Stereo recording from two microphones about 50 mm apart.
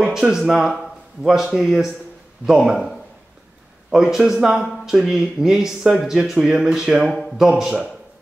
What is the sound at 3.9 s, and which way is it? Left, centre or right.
Speech, centre.